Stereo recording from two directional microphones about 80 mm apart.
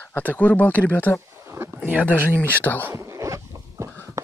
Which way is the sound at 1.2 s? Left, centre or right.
Right.